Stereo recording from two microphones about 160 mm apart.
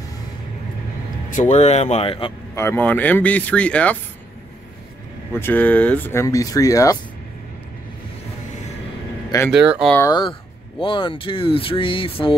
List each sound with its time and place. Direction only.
1.3 s speech: 45° left (ahead or behind)
2.5 s speech: 15° left (ahead or behind)
5.3 s speech: 10° left (ahead or behind)
9.5 s speech: 5° right (ahead or behind)
9.9 s speech: 20° left (ahead or behind)
10.8 s speech: 30° left (ahead or behind)